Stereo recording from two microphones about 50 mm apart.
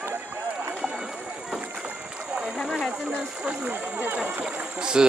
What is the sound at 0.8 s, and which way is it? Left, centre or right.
Rowboat, centre.